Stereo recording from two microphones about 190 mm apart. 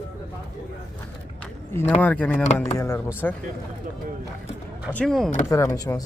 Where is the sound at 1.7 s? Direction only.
10° left (ahead or behind).